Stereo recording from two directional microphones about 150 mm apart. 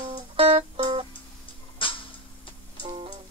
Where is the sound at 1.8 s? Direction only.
35° left (ahead or behind).